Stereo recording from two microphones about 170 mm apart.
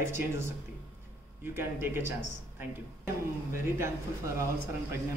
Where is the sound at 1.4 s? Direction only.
15° right (ahead or behind).